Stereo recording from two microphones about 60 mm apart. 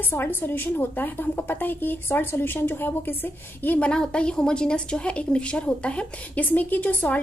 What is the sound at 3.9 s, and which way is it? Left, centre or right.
A woman's voice, centre.